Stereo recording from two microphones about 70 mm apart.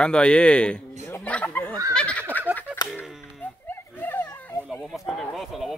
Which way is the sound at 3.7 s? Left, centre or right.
Left.